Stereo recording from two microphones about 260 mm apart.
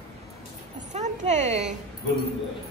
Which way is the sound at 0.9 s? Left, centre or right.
Right.